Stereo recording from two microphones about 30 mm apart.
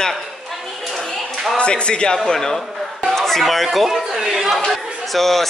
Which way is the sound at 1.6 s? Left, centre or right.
Left.